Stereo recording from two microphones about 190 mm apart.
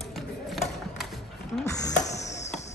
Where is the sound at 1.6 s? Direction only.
15° left (ahead or behind).